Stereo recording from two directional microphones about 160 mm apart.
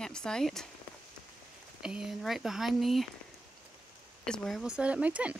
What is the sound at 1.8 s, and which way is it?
Speech, 5° right (ahead or behind).